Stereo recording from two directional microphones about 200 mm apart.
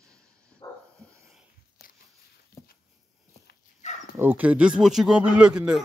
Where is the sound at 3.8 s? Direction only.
35° left (ahead or behind).